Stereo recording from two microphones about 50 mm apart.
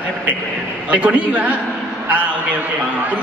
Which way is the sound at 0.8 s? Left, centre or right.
Right.